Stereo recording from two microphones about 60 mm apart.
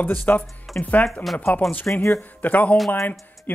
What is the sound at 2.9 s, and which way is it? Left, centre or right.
Speech, left.